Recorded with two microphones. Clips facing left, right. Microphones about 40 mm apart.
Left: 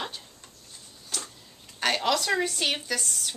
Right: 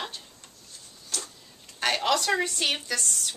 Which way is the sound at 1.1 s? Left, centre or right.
Centre.